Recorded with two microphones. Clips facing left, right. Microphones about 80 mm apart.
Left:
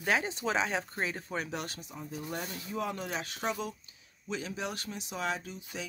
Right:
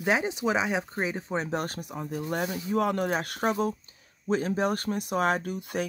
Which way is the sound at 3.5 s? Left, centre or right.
Right.